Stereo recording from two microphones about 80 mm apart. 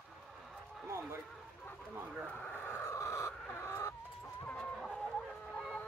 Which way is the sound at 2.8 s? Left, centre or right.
Left.